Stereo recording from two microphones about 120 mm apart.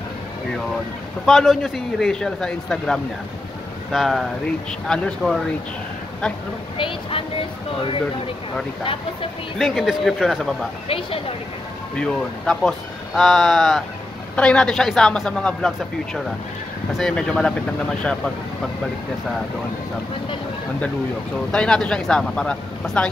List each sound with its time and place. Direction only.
1.2 s speech: centre (ahead or behind)
6.8 s speech: 45° left (ahead or behind)
9.6 s speech: centre (ahead or behind)
10.9 s speech: 50° left (ahead or behind)
12.0 s speech: 5° left (ahead or behind)
21.5 s speech: 5° left (ahead or behind)